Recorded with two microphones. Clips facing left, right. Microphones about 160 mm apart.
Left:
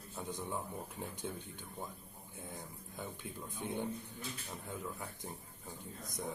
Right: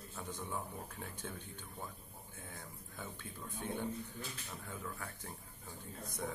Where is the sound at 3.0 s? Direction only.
15° left (ahead or behind).